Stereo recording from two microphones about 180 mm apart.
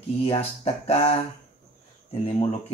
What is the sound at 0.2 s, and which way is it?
Speech, 35° left (ahead or behind).